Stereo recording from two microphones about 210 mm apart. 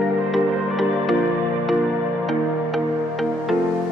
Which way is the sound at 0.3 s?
Centre (ahead or behind).